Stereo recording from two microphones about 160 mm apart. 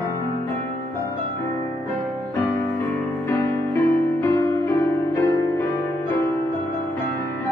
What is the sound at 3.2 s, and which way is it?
Music, 15° left (ahead or behind).